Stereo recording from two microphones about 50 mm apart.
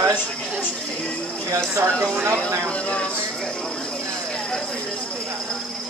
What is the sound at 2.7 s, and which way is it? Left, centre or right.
Speech, left.